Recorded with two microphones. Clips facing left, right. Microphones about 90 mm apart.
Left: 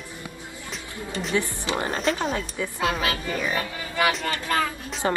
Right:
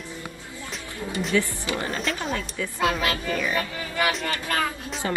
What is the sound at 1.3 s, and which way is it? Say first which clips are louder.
Speech: even; 25° left (ahead or behind).